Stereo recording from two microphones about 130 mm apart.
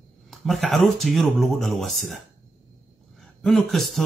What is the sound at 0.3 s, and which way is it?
A man's voice, centre (ahead or behind).